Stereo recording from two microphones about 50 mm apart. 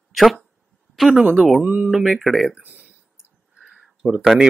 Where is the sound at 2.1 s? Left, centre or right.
Centre.